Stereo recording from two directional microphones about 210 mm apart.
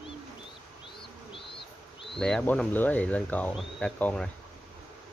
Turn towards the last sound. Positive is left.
turn(degrees=5)  # may be behind; listen again after turning